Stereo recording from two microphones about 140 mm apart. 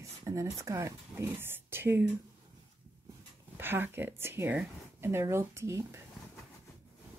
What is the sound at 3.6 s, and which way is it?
Speech, 15° right (ahead or behind).